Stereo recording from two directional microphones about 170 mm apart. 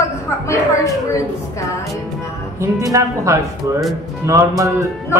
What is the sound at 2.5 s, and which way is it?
Speech, 15° right (ahead or behind).